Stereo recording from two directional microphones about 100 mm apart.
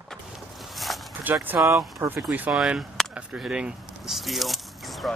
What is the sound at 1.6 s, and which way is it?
Speech, 30° right (ahead or behind).